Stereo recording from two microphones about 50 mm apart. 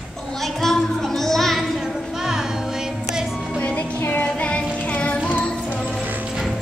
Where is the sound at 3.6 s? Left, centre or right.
Left.